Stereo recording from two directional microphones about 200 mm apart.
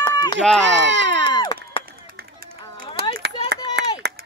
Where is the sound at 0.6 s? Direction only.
65° right (ahead or behind).